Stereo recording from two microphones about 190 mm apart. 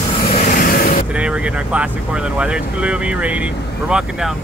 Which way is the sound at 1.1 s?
5° right (ahead or behind).